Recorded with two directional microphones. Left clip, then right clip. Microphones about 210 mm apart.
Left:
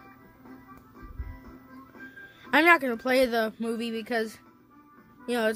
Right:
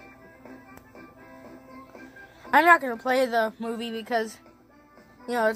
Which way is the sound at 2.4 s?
20° left (ahead or behind).